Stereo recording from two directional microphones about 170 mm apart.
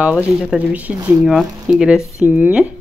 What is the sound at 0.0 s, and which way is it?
Speech, 5° right (ahead or behind).